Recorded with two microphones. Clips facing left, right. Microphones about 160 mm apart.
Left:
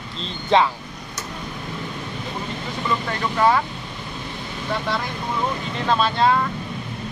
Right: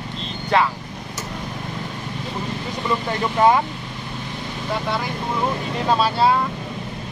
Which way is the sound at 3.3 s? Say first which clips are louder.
Right 2 dB; 20° right (ahead or behind).